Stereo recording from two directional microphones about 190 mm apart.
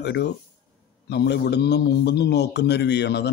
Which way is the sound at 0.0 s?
65° left (ahead or behind).